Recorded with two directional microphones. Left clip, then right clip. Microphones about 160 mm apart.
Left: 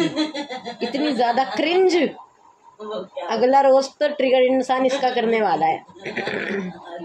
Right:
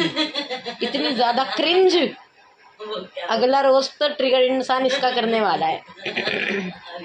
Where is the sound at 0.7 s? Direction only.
15° left (ahead or behind).